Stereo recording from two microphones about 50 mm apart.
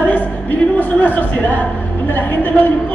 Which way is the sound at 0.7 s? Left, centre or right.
Left.